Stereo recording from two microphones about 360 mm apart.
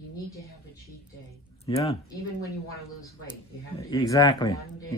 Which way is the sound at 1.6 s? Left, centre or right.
Centre.